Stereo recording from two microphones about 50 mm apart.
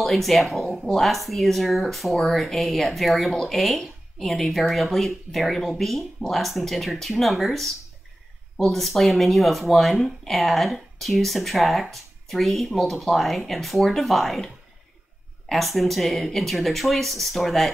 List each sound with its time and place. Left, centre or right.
0.0 s speech: centre